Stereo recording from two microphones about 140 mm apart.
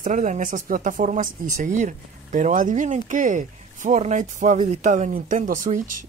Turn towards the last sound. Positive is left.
turn(degrees=-70)  # may be behind; listen again after turning